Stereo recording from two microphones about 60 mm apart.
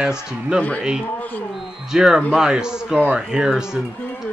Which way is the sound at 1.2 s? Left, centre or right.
Left.